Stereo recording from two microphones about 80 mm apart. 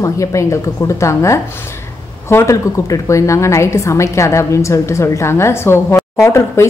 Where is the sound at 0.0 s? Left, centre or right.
Left.